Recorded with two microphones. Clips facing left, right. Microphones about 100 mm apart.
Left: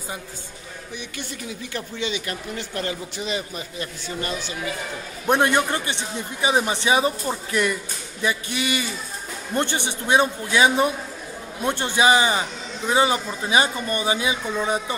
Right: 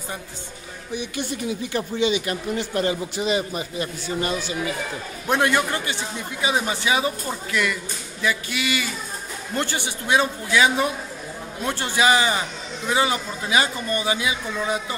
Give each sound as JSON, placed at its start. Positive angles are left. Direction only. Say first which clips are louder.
{"t": 1.7, "sound": "speech", "louder": "right 6 dB", "side_deg": -20}
{"t": 5.2, "sound": "a man's voice", "louder": "left 2 dB", "side_deg": 20}